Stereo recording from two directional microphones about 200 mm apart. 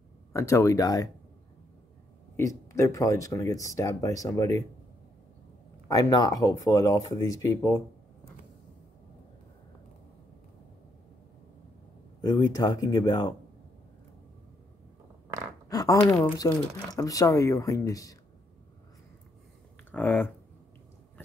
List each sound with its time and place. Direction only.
0.3 s speech: 15° left (ahead or behind)
2.3 s speech: 15° left (ahead or behind)
5.9 s speech: 20° left (ahead or behind)
12.2 s speech: 20° left (ahead or behind)
15.7 s speech: 20° left (ahead or behind)
16.0 s speech: 5° left (ahead or behind)
16.9 s speech: 15° left (ahead or behind)
19.9 s speech: 10° left (ahead or behind)